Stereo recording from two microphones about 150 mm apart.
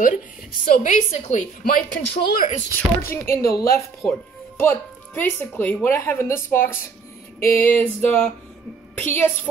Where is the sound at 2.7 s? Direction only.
15° left (ahead or behind).